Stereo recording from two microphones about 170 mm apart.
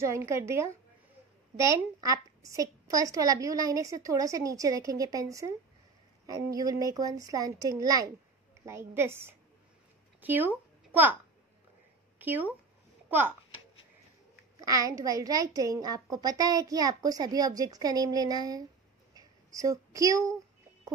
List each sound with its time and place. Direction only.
0.0 s a woman's voice: 15° right (ahead or behind)
12.2 s speech: 10° right (ahead or behind)
14.6 s a woman's voice: 20° right (ahead or behind)
19.1 s a sound: 20° right (ahead or behind)